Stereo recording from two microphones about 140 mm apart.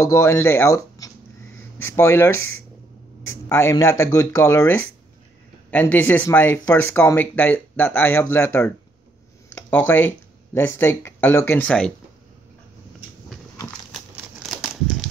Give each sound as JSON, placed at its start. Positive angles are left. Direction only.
{"t": 0.0, "sound": "a man's voice", "side_deg": 20}
{"t": 13.9, "sound": "crumpling", "side_deg": -5}